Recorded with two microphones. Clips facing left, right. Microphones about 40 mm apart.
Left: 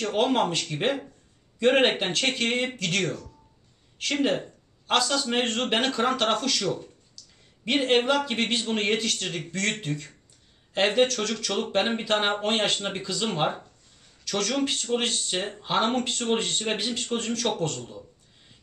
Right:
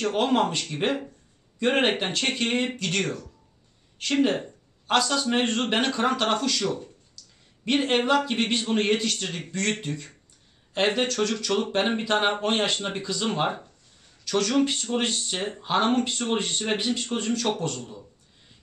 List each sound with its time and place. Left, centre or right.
0.1 s speech: centre
4.8 s speech: centre
8.0 s speech: centre
8.3 s speech: centre